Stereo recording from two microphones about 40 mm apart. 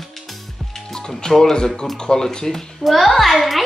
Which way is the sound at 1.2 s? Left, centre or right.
Centre.